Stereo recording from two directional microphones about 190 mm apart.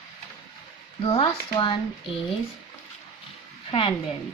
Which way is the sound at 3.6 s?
30° left (ahead or behind).